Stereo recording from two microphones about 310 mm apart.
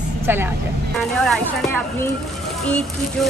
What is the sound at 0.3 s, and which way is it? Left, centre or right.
A woman's voice, centre.